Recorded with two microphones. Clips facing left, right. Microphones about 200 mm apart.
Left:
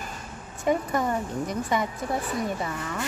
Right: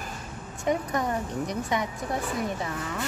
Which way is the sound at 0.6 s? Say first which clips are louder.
Left 2 dB; centre (ahead or behind).